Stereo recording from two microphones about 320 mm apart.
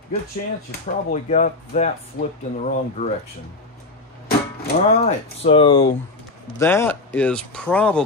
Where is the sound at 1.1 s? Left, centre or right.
Left.